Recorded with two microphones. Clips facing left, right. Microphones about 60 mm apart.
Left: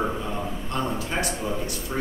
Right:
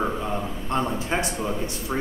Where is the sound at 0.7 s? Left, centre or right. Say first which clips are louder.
Right 3 dB; right.